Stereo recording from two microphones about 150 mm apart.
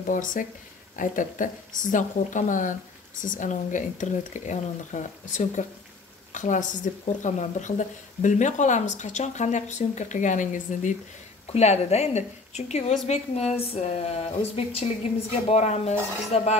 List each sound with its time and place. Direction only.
0.0 s a woman's voice: 65° left (ahead or behind)
11.5 s a woman's voice: 45° left (ahead or behind)